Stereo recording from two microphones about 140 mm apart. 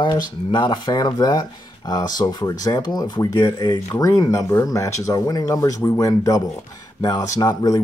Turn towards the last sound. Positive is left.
turn(degrees=25)  # may be behind; listen again after turning